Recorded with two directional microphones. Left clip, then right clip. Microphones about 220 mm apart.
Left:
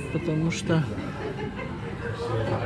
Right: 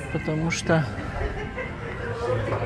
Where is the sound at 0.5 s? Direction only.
15° right (ahead or behind).